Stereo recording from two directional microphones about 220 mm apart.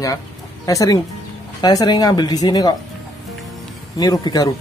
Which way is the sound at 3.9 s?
15° left (ahead or behind).